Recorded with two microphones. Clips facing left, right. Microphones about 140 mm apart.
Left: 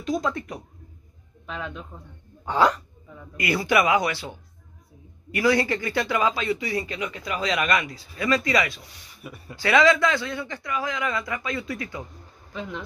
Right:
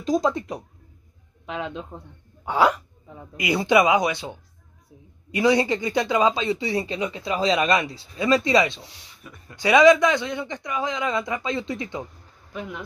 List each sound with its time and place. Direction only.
0.2 s speech: 20° right (ahead or behind)
2.4 s speech: 10° right (ahead or behind); by 8.8 s 25° right (ahead or behind)
9.2 s speech: 10° left (ahead or behind)
9.6 s speech: 15° right (ahead or behind)
12.5 s speech: 5° right (ahead or behind)